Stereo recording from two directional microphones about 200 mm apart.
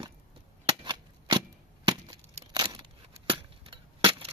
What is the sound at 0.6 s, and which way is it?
Cap gun, 25° right (ahead or behind).